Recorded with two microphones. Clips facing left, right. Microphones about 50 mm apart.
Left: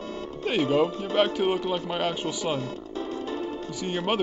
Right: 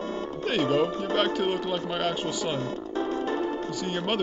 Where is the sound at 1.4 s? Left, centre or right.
Centre.